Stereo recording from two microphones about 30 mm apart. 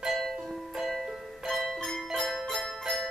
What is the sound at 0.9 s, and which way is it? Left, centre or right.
Music, centre.